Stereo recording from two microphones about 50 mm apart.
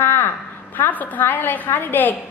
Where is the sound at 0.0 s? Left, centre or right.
Left.